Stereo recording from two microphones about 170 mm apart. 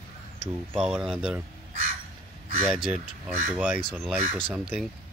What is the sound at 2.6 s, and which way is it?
Speech, 5° right (ahead or behind).